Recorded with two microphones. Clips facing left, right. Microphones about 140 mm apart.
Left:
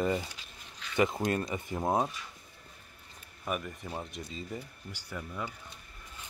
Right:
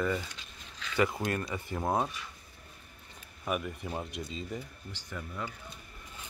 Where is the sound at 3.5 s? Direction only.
5° right (ahead or behind).